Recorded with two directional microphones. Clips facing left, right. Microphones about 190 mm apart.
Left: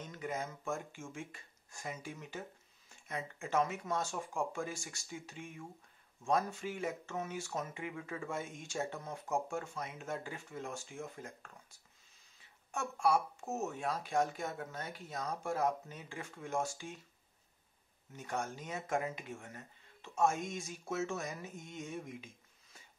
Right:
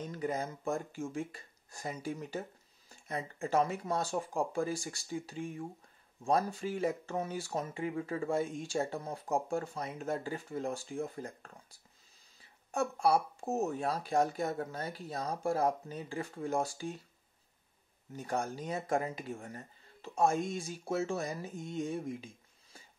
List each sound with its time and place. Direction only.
0.0 s speech: 35° right (ahead or behind)
18.1 s speech: 35° right (ahead or behind)